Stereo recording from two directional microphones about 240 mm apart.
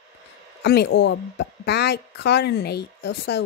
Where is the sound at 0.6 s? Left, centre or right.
Left.